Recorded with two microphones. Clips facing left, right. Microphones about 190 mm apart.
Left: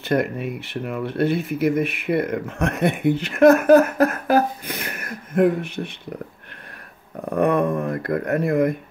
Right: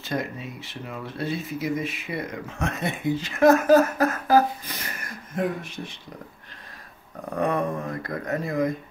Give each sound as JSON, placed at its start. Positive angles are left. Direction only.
{"t": 0.0, "sound": "speech", "side_deg": 60}
{"t": 7.3, "sound": "speech", "side_deg": 60}